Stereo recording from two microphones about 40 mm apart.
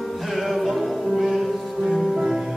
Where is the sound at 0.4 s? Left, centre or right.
Centre.